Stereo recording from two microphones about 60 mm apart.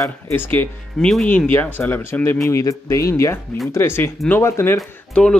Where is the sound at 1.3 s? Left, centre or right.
Left.